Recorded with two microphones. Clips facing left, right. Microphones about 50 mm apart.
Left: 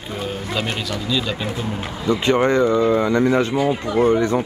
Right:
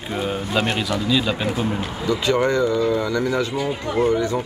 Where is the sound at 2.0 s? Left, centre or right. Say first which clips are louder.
Left 3 dB; left.